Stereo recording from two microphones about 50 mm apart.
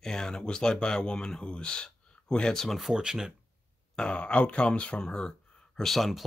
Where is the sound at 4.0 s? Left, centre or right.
Centre.